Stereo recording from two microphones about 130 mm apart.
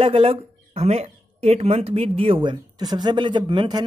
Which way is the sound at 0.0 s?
45° right (ahead or behind).